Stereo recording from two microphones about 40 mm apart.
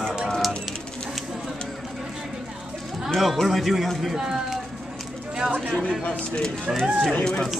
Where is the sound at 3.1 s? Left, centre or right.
Centre.